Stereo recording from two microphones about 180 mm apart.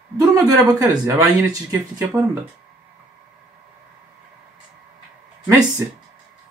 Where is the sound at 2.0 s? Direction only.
5° right (ahead or behind).